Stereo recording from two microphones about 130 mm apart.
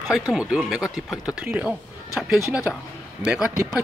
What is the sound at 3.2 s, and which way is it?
Speech, 10° right (ahead or behind).